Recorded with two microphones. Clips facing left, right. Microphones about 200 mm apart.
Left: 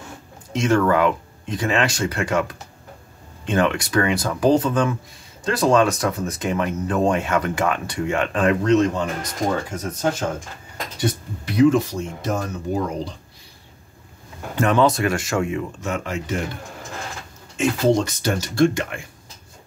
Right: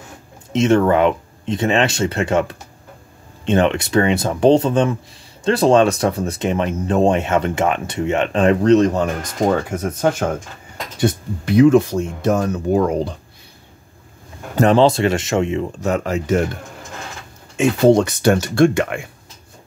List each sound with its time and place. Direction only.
0.5 s speech: 25° right (ahead or behind); by 9.1 s 40° right (ahead or behind)
9.7 s speech: 55° right (ahead or behind)
14.5 s speech: 35° right (ahead or behind)
15.8 s speech: 40° right (ahead or behind)
17.6 s speech: 60° right (ahead or behind)